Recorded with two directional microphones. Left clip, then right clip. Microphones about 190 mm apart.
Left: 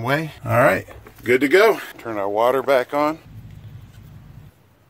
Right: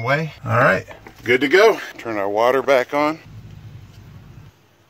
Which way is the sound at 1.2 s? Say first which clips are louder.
Right 1 dB; centre (ahead or behind).